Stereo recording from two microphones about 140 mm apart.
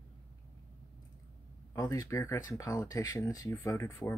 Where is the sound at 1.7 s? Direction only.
25° left (ahead or behind).